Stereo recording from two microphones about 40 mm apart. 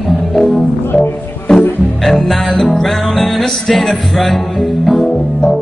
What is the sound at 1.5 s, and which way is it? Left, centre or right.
Music, centre.